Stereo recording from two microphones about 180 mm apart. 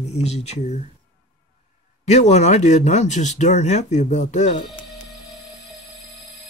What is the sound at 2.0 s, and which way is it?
Speech, 40° left (ahead or behind).